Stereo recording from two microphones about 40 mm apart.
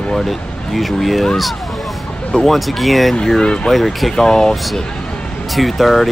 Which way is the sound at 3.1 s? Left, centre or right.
Centre.